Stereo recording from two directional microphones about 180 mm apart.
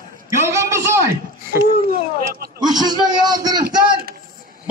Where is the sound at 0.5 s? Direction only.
15° right (ahead or behind).